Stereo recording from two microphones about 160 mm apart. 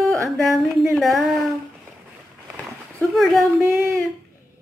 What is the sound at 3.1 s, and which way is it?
Speech, centre (ahead or behind).